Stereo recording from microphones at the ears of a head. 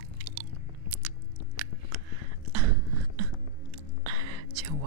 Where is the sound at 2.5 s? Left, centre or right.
Right.